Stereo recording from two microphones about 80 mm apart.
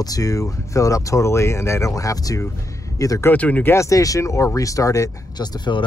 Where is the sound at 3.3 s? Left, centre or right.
Centre.